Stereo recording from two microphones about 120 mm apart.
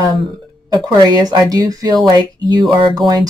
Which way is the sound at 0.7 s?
35° right (ahead or behind).